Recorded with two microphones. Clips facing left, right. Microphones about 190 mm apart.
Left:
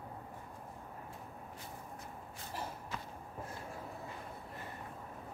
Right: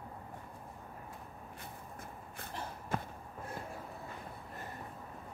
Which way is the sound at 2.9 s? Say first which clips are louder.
Right 7 dB; 50° right (ahead or behind).